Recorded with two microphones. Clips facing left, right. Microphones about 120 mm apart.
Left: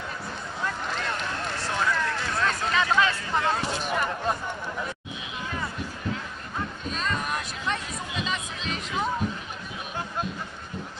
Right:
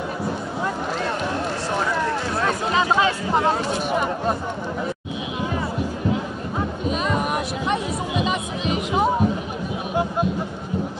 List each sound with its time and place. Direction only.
1.8 s a sound: 15° right (ahead or behind)
3.4 s speech: 15° right (ahead or behind)
6.9 s music: 15° right (ahead or behind)